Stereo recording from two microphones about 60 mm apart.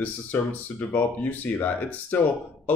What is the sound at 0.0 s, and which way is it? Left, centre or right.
Speech, left.